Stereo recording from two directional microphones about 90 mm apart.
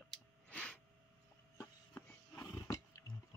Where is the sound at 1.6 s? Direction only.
30° left (ahead or behind).